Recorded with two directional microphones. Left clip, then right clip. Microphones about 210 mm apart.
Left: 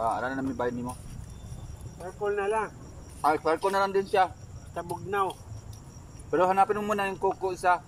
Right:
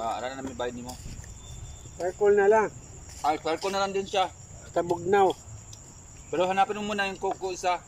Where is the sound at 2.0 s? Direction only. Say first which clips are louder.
Right 8 dB; 25° right (ahead or behind).